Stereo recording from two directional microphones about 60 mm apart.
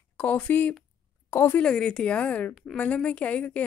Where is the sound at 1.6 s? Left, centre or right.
Centre.